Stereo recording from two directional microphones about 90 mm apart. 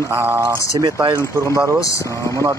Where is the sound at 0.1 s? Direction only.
20° right (ahead or behind).